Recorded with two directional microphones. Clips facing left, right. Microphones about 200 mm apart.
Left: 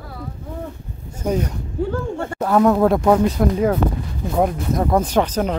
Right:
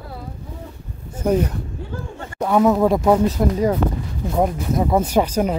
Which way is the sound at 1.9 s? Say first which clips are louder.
Left 8 dB; 45° left (ahead or behind).